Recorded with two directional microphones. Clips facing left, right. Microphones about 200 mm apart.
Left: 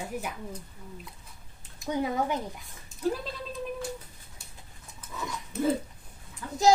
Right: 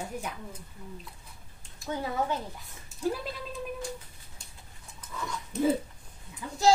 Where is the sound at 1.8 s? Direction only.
15° left (ahead or behind).